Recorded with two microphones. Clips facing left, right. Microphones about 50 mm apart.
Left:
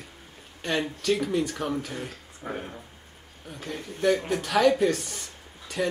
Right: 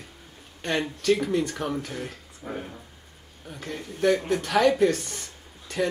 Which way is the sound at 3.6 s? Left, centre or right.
Centre.